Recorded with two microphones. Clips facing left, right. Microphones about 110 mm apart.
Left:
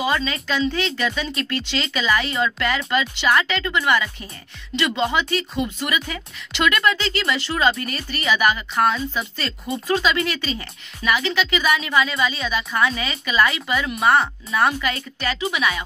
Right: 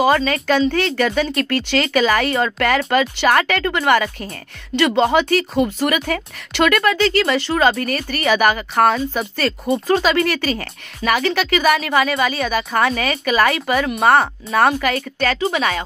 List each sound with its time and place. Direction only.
0.0 s speech: 45° right (ahead or behind)
5.9 s speech: 60° right (ahead or behind); by 7.7 s 40° right (ahead or behind)
7.7 s speech: 55° right (ahead or behind)
9.7 s speech: 35° right (ahead or behind)
10.3 s speech: 65° right (ahead or behind)
13.7 s speech: 45° right (ahead or behind)
15.4 s speech: 40° right (ahead or behind)